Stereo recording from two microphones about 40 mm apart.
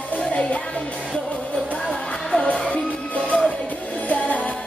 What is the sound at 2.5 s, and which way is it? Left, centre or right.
Music, left.